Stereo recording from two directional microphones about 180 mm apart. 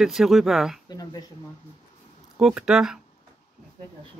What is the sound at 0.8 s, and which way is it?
Speech, 20° left (ahead or behind).